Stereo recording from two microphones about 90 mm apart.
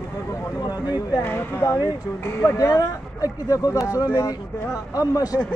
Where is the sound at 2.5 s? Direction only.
40° left (ahead or behind).